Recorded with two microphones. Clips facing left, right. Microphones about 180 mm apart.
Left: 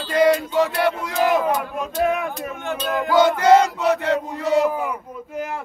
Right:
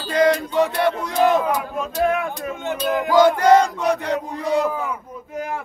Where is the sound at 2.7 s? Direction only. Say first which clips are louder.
Right 1 dB; 15° right (ahead or behind).